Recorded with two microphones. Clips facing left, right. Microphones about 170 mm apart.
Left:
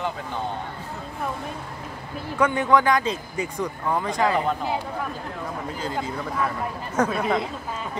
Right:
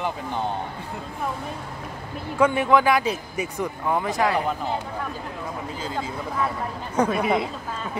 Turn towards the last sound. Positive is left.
turn(degrees=-5)  # may be behind; listen again after turning